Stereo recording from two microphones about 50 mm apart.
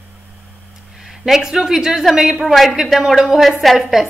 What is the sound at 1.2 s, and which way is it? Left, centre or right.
A woman's voice, centre.